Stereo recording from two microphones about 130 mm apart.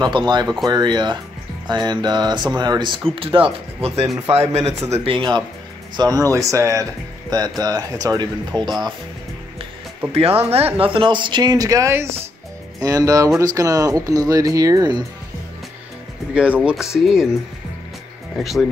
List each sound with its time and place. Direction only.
0.0 s a man's voice: 35° right (ahead or behind)
5.9 s speech: 30° right (ahead or behind)
10.1 s speech: 50° right (ahead or behind); by 15.0 s 30° right (ahead or behind)
16.3 s speech: 10° right (ahead or behind)
18.4 s speech: centre (ahead or behind)